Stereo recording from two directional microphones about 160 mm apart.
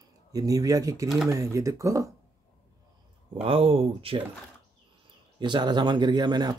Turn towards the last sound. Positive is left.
turn(degrees=-25)  # may be behind; listen again after turning